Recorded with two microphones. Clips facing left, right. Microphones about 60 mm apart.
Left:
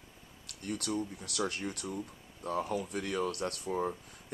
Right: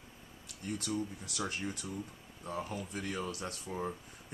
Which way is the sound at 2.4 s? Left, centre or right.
Left.